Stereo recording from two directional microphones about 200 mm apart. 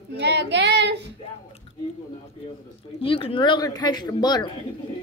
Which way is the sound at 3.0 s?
25° left (ahead or behind).